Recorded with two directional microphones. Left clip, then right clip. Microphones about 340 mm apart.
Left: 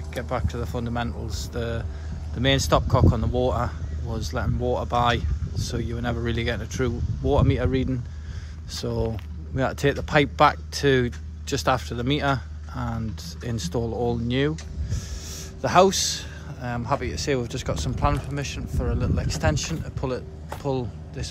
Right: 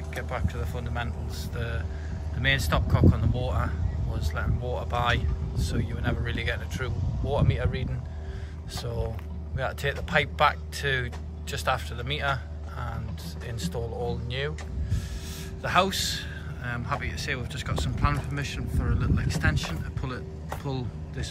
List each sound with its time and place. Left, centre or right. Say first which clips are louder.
0.1 s a man's voice: left 5 dB; centre
9.6 s a man's voice: left 6 dB; centre
15.6 s a man's voice: left 6 dB; centre